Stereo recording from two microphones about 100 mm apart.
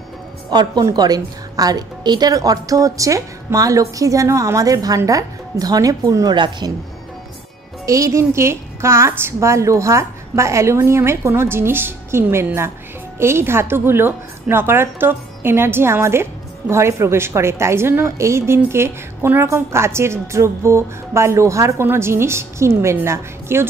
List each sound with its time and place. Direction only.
0.5 s a woman's voice: 45° right (ahead or behind)
6.3 s speech: 50° right (ahead or behind)
7.8 s a woman's voice: 35° right (ahead or behind)